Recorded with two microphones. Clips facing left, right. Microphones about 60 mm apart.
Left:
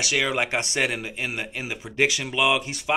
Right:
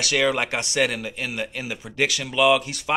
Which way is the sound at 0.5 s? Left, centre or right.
Left.